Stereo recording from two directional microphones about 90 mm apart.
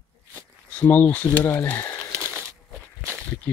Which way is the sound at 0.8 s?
15° left (ahead or behind).